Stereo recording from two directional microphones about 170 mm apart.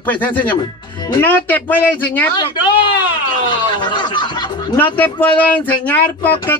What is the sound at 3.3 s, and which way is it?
Music, 25° left (ahead or behind).